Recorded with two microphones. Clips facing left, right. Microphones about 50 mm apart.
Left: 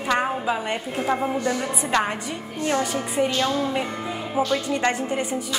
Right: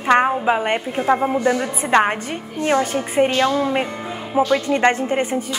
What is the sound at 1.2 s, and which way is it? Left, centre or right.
A woman's voice, right.